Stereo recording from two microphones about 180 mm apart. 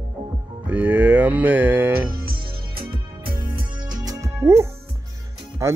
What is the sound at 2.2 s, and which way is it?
Music, 55° right (ahead or behind).